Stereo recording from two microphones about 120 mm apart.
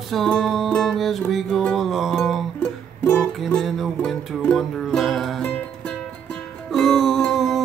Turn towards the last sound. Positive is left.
turn(degrees=0)  # may be behind; listen again after turning